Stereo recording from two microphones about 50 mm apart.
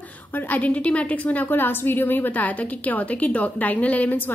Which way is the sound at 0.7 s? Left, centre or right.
Left.